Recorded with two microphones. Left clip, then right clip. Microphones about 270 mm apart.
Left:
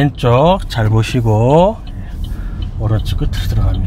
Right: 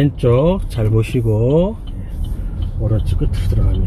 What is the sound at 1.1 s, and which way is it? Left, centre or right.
Speech, left.